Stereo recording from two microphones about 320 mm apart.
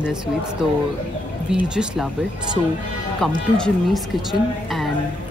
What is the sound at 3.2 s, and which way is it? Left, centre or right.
Speech, centre.